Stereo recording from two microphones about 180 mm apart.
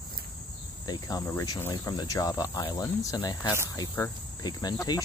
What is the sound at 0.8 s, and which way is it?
Speech, 20° left (ahead or behind).